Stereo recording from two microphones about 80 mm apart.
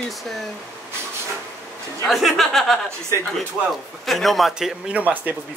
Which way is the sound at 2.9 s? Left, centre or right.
Right.